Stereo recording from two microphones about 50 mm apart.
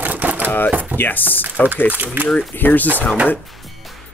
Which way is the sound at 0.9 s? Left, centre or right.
Left.